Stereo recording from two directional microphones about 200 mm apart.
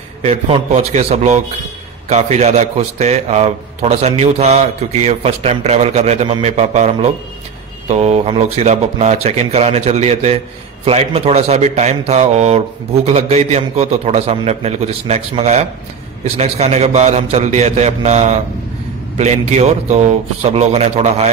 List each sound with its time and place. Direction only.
0.2 s a man's voice: 30° right (ahead or behind)